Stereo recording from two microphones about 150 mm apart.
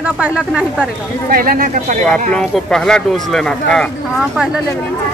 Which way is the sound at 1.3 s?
70° right (ahead or behind).